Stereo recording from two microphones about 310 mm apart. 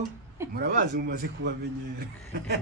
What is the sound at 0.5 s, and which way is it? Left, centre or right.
A man's voice, right.